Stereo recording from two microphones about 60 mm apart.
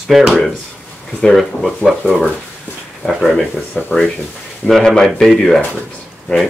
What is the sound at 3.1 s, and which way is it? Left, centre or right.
Speech, centre.